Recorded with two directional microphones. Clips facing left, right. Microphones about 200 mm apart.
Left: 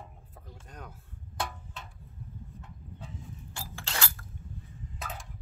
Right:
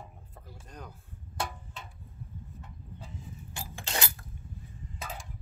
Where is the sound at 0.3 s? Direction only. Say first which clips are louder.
Right 1 dB; centre (ahead or behind).